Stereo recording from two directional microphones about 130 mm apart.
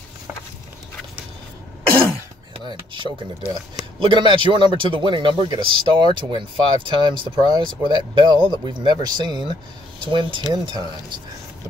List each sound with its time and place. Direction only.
2.7 s speech: 40° right (ahead or behind)